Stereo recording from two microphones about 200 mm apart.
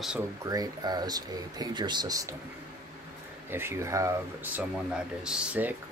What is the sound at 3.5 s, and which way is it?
Speech, 15° right (ahead or behind).